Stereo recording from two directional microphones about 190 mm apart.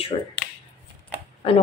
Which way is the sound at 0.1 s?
30° left (ahead or behind).